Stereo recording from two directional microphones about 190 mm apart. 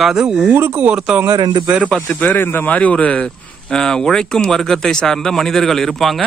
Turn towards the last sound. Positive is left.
turn(degrees=0)  # may be behind; listen again after turning